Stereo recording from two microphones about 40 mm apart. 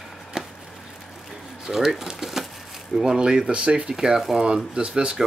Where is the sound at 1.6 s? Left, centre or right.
Centre.